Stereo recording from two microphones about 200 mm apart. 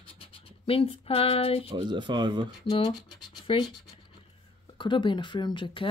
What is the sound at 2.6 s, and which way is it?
Speech, 20° left (ahead or behind).